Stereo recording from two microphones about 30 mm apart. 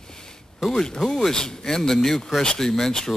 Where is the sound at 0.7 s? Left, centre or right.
Centre.